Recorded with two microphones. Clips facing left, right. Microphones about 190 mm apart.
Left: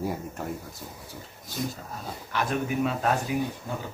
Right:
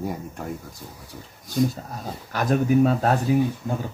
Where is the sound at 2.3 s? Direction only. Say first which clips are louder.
Right 7 dB; 40° right (ahead or behind).